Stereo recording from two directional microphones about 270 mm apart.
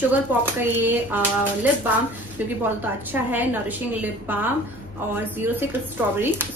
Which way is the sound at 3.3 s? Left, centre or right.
Centre.